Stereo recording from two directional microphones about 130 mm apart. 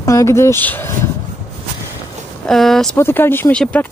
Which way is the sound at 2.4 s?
Centre (ahead or behind).